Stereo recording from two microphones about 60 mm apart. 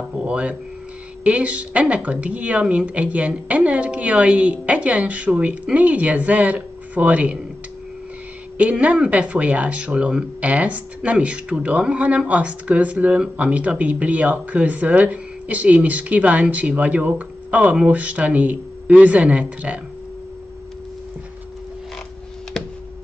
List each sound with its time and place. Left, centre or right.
0.2 s speech: centre
8.5 s speech: right